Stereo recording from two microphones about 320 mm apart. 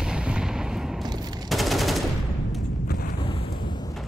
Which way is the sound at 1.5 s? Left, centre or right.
Centre.